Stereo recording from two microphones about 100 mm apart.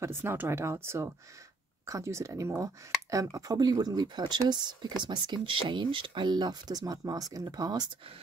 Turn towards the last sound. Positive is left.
turn(degrees=-40)  # may be behind; listen again after turning